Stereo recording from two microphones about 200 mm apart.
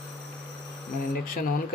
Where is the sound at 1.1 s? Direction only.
45° left (ahead or behind).